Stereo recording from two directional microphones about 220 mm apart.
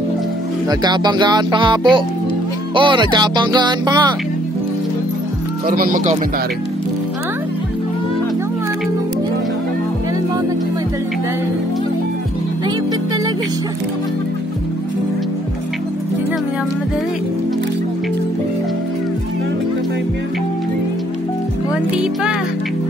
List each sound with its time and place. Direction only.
0.7 s speech: 20° right (ahead or behind)
5.7 s speech: 40° right (ahead or behind)